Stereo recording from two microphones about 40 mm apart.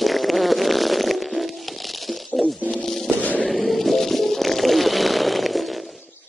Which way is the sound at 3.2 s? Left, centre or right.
Left.